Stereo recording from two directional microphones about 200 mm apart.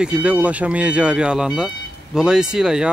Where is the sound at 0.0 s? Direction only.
5° right (ahead or behind).